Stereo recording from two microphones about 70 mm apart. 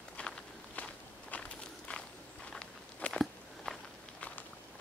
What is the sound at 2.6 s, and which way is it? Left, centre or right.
Walk, centre.